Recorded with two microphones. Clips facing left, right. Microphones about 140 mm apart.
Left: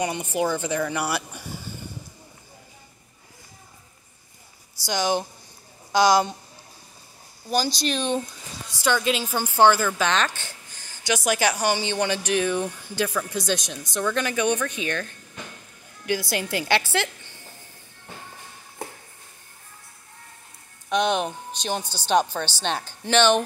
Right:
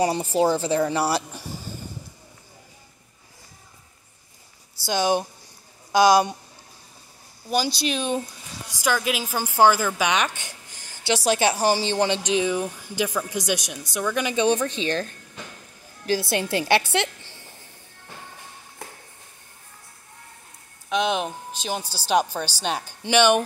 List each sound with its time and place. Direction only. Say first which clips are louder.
0.0 s speech: right 4 dB; 35° right (ahead or behind)
4.8 s a woman's voice: right 2 dB; 20° right (ahead or behind)
7.4 s speech: even; 5° right (ahead or behind)
10.4 s a sound: even; 20° right (ahead or behind)
11.1 s a woman's voice: right 2 dB; 25° right (ahead or behind)
12.2 s speech: right 1 dB; 15° right (ahead or behind)
14.3 s a woman's voice: right 3 dB; 25° right (ahead or behind)
20.9 s a woman's voice: left 1 dB; centre (ahead or behind)